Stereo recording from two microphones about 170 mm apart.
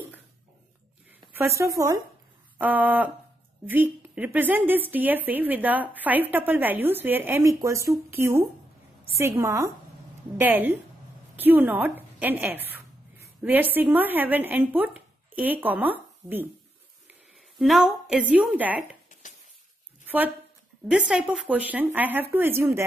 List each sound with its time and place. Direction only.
1.4 s speech: 15° right (ahead or behind)
2.6 s a woman's voice: 10° right (ahead or behind)
19.2 s a sound: 50° left (ahead or behind)
20.9 s a woman's voice: 5° right (ahead or behind)